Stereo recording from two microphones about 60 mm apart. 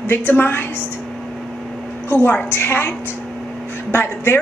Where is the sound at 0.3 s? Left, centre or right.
Left.